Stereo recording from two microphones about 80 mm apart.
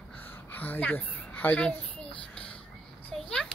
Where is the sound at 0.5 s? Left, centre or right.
Left.